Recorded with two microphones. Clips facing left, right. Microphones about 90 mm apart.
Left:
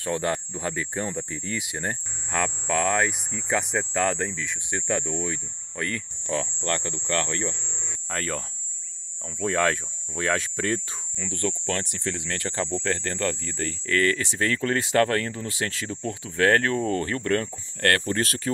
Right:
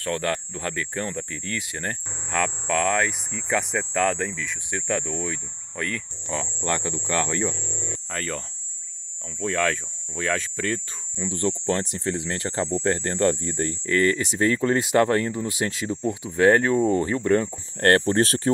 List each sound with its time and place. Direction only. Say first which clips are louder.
0.0 s speech: even; 15° left (ahead or behind)
6.4 s speech: right 2 dB; 10° right (ahead or behind)
8.1 s speech: left 2 dB; centre (ahead or behind)
11.1 s speech: right 4 dB; 20° right (ahead or behind)
17.7 s speech: right 5 dB; 30° right (ahead or behind)